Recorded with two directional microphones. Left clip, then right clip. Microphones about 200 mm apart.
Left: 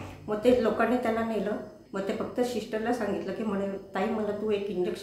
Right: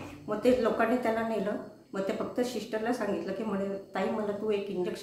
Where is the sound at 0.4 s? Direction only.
5° right (ahead or behind).